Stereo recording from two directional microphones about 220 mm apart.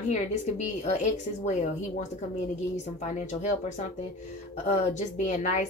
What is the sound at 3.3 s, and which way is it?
A woman's voice, 30° left (ahead or behind).